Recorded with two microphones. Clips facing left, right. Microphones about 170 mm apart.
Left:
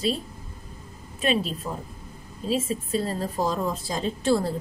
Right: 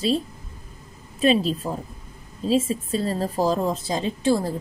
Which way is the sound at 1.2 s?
30° right (ahead or behind).